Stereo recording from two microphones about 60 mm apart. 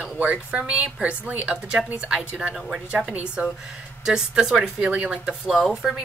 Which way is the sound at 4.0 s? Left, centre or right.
Centre.